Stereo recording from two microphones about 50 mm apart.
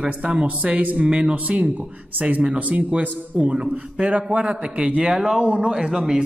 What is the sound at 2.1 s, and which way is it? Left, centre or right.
Speech, right.